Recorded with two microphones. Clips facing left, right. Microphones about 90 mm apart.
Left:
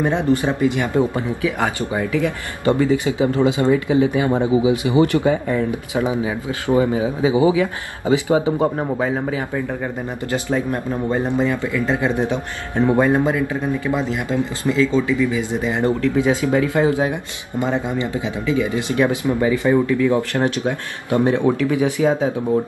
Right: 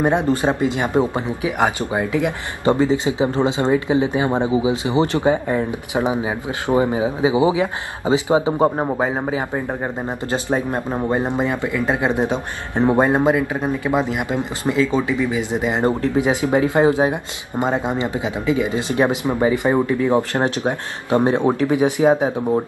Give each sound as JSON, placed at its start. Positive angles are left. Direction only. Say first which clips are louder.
{"t": 0.0, "sound": "speech", "louder": "right 1 dB", "side_deg": -20}